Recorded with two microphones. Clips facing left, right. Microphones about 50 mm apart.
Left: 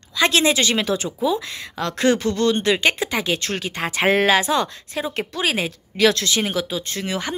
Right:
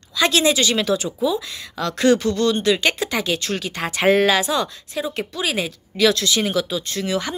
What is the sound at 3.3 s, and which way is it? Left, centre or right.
Speech, left.